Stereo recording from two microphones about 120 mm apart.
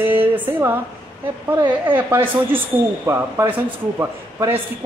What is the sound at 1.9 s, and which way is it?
A man's voice, 20° right (ahead or behind).